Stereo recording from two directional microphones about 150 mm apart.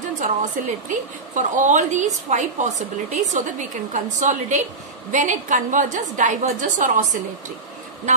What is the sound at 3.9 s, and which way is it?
A woman's voice, 55° right (ahead or behind).